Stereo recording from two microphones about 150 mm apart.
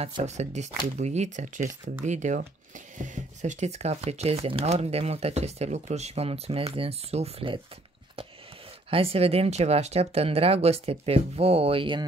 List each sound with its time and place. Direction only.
0.0 s speech: 50° right (ahead or behind)
8.9 s speech: 40° right (ahead or behind)